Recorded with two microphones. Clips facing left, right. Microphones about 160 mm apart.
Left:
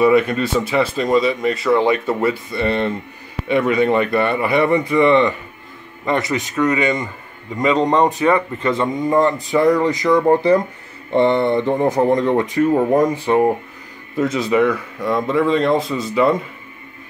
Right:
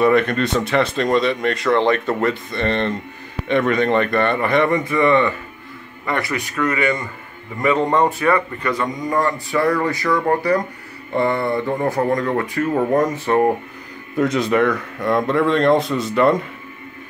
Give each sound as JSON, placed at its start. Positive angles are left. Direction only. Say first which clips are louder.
{"t": 0.0, "sound": "speech", "louder": "left 2 dB", "side_deg": 5}
{"t": 14.1, "sound": "speech", "louder": "even", "side_deg": 0}